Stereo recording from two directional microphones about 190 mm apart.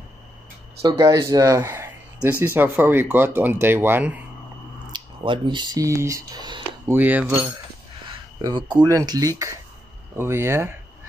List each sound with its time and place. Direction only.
0.8 s speech: 20° right (ahead or behind)
4.9 s speech: 25° right (ahead or behind)
7.0 s speech: 10° right (ahead or behind)
8.0 s a sound: 25° right (ahead or behind)
8.7 s speech: 15° right (ahead or behind)